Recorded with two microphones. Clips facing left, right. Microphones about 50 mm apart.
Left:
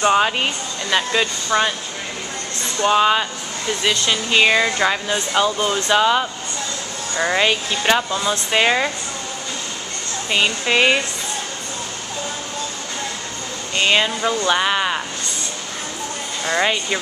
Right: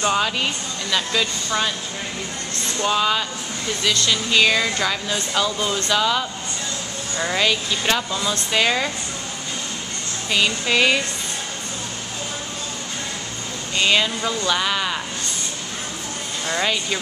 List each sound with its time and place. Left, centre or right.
0.0 s speech: left
2.8 s speech: left
10.3 s speech: left
13.7 s speech: left
16.4 s speech: left